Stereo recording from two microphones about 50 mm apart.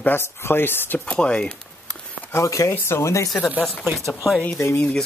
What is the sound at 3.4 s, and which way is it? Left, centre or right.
Speech, left.